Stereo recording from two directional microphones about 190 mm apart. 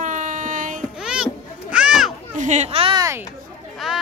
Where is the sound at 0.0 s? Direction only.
40° right (ahead or behind).